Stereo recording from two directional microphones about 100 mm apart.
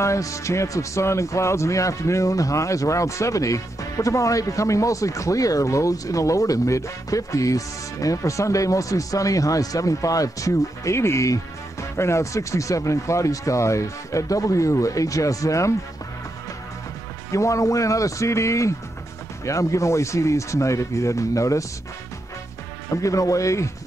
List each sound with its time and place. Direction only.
0.0 s speech: 30° left (ahead or behind)
17.3 s speech: 30° left (ahead or behind)
23.0 s speech: 35° left (ahead or behind)